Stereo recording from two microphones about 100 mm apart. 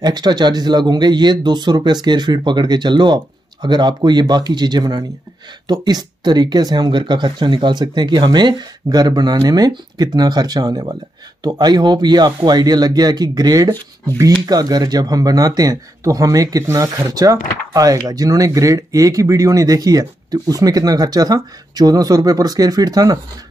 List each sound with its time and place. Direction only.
0.0 s speech: 45° right (ahead or behind)